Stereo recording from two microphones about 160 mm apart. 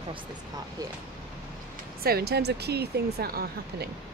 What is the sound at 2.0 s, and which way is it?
Speech, 75° right (ahead or behind).